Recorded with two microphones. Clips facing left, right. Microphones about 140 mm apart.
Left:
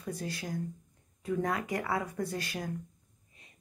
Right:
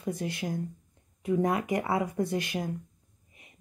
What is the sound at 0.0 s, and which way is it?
Speech, 20° right (ahead or behind).